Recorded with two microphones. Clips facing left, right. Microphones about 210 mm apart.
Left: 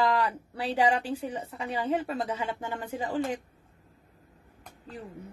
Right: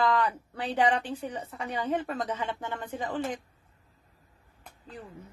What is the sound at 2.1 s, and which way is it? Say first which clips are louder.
Speech: left 1 dB; 10° left (ahead or behind).